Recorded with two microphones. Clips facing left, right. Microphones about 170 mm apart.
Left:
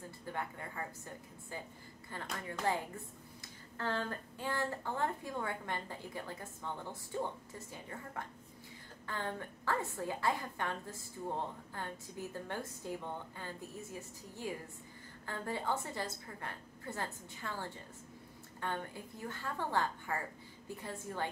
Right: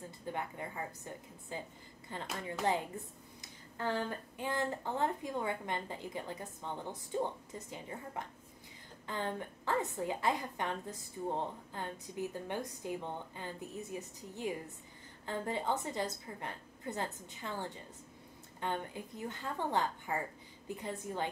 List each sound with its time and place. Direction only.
0.2 s a woman's voice: 20° right (ahead or behind)